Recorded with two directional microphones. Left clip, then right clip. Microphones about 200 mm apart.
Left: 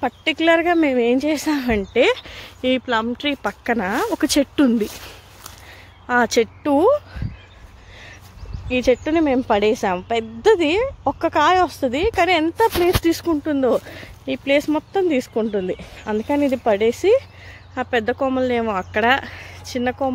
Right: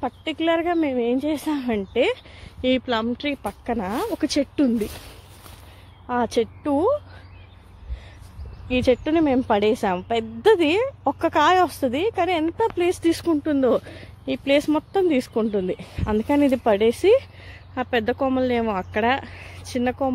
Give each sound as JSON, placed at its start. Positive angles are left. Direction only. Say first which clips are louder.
{"t": 0.0, "sound": "speech", "louder": "left 6 dB", "side_deg": 15}
{"t": 2.6, "sound": "speech", "louder": "left 2 dB", "side_deg": 0}
{"t": 3.4, "sound": "speech", "louder": "left 5 dB", "side_deg": 20}
{"t": 6.0, "sound": "speech", "louder": "left 5 dB", "side_deg": 15}
{"t": 8.6, "sound": "speech", "louder": "left 2 dB", "side_deg": -5}